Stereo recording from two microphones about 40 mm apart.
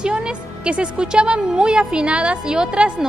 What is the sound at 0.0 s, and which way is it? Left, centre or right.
A woman's voice, right.